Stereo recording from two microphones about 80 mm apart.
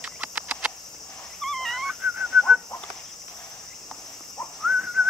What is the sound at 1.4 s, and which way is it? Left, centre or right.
Dog, centre.